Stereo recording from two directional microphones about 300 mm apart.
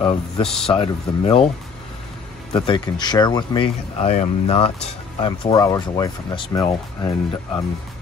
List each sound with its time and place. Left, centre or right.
0.4 s speech: centre
0.7 s speech: centre
2.5 s speech: centre